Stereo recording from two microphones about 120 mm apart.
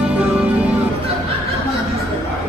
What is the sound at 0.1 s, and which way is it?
Music, 10° right (ahead or behind).